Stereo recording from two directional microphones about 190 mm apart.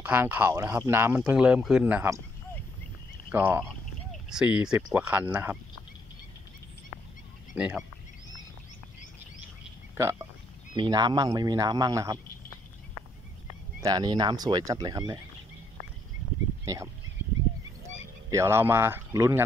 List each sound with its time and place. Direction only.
0.0 s speech: 10° right (ahead or behind)
3.3 s speech: 10° right (ahead or behind)
7.5 s speech: 5° right (ahead or behind)
9.9 s speech: 15° right (ahead or behind)
13.7 s speech: 20° right (ahead or behind)
16.6 s speech: 15° right (ahead or behind)
18.3 s speech: 15° right (ahead or behind)